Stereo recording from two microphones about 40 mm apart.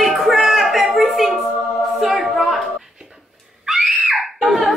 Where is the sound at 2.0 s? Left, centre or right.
Centre.